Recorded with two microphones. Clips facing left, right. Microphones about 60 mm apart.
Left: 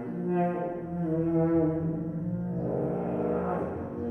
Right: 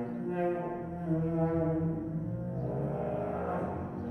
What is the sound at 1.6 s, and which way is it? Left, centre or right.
Music, centre.